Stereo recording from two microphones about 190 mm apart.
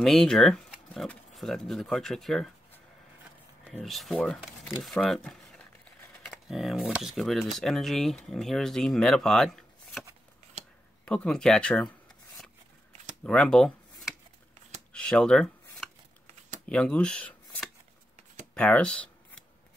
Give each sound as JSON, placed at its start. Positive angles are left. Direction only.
{"t": 0.0, "sound": "speech", "side_deg": 0}
{"t": 11.1, "sound": "speech", "side_deg": 5}
{"t": 13.2, "sound": "a sound", "side_deg": 5}
{"t": 14.9, "sound": "shuffling cards", "side_deg": 5}
{"t": 16.6, "sound": "speech", "side_deg": 5}
{"t": 18.5, "sound": "a sound", "side_deg": 5}